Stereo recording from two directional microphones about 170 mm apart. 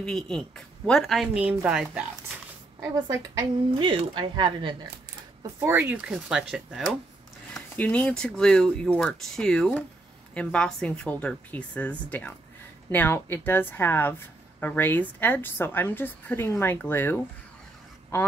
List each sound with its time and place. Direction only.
0.0 s speech: 5° left (ahead or behind)
2.8 s speech: 20° right (ahead or behind)
5.6 s speech: 10° right (ahead or behind)
7.5 s speech: 10° left (ahead or behind)